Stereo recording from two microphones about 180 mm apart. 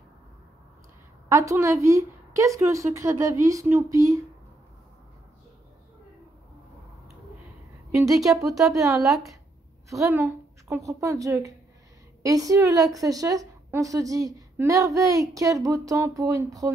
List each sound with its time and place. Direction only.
1.3 s a woman's voice: 15° right (ahead or behind)
7.9 s a woman's voice: 20° right (ahead or behind)
8.5 s a woman's voice: centre (ahead or behind)
8.7 s a woman's voice: 20° right (ahead or behind)